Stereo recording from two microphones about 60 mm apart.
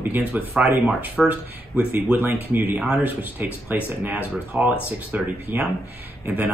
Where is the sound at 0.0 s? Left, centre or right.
Right.